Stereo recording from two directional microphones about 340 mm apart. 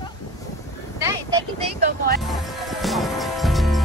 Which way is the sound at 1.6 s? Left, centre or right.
Right.